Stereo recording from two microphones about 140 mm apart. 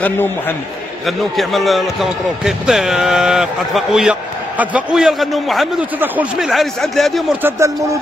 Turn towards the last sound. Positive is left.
turn(degrees=-20)  # may be behind; listen again after turning